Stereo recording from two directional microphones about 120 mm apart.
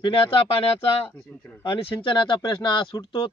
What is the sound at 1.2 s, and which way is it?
Speech, 15° left (ahead or behind).